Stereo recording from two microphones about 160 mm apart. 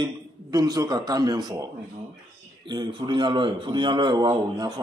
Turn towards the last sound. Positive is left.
turn(degrees=-25)  # may be behind; listen again after turning